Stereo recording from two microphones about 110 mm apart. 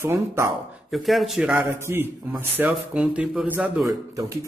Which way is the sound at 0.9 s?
Centre (ahead or behind).